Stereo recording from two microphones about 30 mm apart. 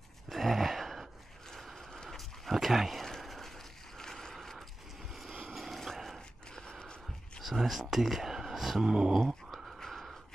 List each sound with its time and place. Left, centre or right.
0.3 s gasp: centre
1.8 s vehicle: centre
2.0 s dog: centre
2.5 s speech: centre
3.0 s a sound: centre
5.5 s a sound: centre
5.9 s dog: centre
6.6 s gasp: left
7.4 s speech: centre
8.8 s a sound: right
9.2 s dog: centre
9.8 s a sound: centre